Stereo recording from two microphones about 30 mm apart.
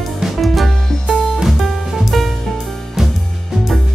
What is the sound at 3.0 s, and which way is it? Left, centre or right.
Music, centre.